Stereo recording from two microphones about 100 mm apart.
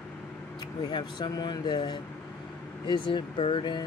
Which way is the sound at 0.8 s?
50° left (ahead or behind).